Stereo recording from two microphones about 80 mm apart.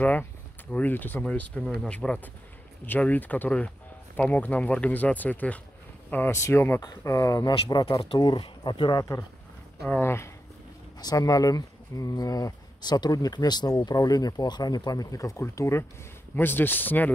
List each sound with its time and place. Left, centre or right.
0.0 s speech: left
2.0 s speech: centre
6.3 s speech: left
7.9 s speech: left
9.8 s speech: left
11.0 s speech: left
16.3 s speech: left